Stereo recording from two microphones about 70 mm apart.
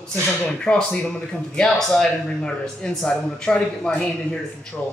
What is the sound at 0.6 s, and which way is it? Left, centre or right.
Speech, centre.